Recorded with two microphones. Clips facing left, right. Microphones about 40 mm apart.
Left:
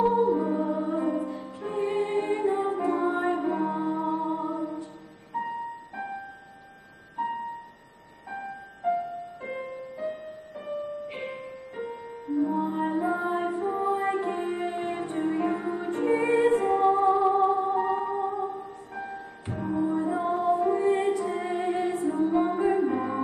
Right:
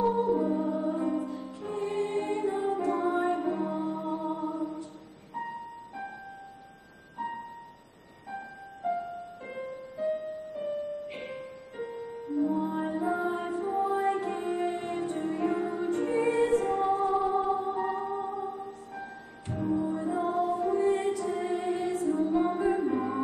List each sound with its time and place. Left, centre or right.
0.0 s music: centre
8.3 s music: centre
9.9 s music: centre